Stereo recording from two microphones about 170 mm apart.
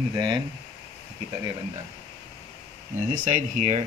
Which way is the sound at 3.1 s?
50° right (ahead or behind).